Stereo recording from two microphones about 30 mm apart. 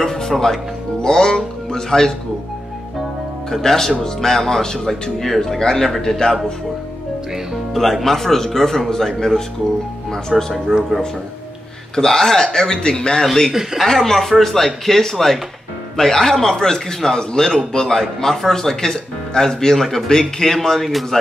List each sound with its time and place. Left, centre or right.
0.0 s music: centre
1.0 s speech: left
3.4 s a man's voice: centre
7.7 s speech: centre
10.3 s speech: centre
10.9 s a man's voice: centre
11.9 s a man's voice: centre
13.7 s speech: centre
14.0 s a man's voice: centre